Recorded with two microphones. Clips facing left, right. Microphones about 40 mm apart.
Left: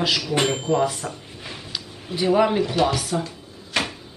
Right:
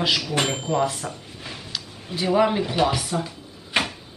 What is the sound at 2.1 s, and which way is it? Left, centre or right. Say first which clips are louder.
Speech: left 1 dB; centre.